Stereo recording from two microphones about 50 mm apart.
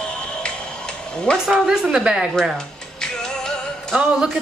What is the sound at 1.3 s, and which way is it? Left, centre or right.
Speech, centre.